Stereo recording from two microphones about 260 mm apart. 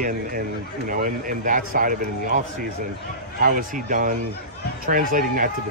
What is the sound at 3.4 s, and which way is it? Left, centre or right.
Speech, right.